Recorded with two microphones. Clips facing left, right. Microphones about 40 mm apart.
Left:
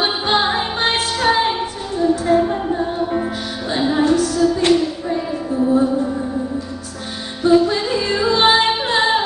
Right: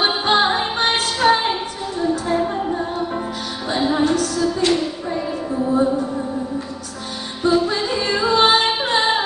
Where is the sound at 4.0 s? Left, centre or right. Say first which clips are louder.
Left 5 dB; left.